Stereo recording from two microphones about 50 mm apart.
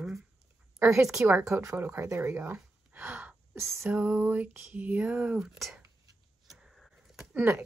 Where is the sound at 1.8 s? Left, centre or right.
Right.